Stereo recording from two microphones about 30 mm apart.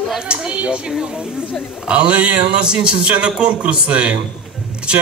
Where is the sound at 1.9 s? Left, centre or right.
Right.